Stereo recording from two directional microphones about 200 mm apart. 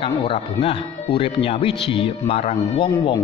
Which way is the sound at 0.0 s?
30° left (ahead or behind).